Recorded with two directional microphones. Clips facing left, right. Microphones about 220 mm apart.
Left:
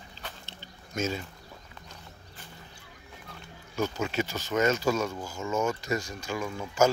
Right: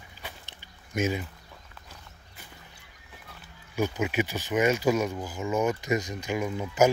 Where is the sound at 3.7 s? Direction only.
15° right (ahead or behind).